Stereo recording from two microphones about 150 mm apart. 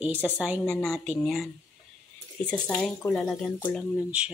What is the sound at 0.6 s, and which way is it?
A woman's voice, 5° left (ahead or behind).